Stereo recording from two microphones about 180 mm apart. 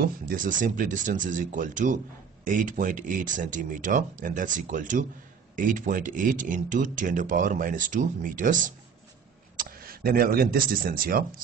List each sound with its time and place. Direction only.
0.0 s speech: 50° right (ahead or behind)